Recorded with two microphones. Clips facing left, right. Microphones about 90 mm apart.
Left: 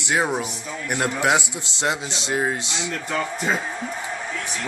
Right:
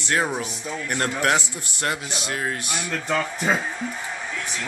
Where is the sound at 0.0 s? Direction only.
15° left (ahead or behind).